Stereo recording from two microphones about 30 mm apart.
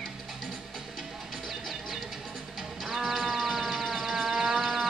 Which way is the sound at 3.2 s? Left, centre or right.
Centre.